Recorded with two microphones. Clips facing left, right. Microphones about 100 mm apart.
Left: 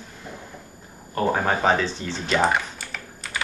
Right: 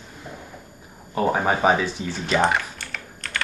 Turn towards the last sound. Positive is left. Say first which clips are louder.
# right 1 dB
turn(degrees=5)  # may be behind; listen again after turning